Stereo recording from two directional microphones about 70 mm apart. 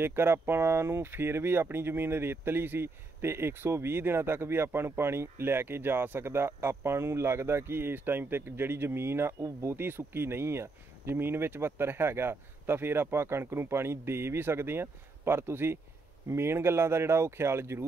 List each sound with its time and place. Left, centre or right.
0.0 s speech: right